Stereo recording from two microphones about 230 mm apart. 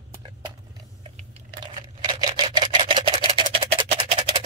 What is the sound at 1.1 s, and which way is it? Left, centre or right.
Camera, right.